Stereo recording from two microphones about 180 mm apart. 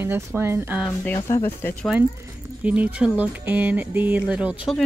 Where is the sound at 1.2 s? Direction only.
15° left (ahead or behind).